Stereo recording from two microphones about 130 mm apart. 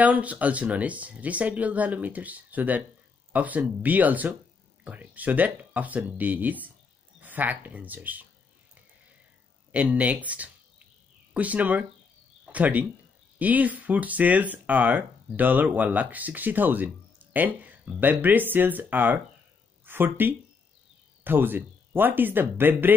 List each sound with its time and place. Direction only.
0.0 s speech: 10° right (ahead or behind)
9.7 s speech: 10° right (ahead or behind)